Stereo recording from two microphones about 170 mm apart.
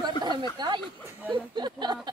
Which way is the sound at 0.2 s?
25° right (ahead or behind).